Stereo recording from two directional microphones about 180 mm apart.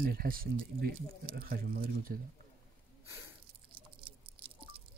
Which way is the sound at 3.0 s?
15° right (ahead or behind).